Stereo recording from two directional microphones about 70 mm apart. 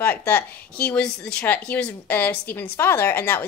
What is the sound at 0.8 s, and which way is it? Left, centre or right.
A woman's voice, centre.